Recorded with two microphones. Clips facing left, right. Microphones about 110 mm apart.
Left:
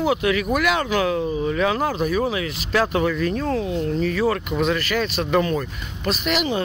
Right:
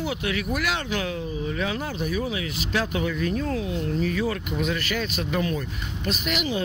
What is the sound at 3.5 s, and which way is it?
Speech, 45° left (ahead or behind).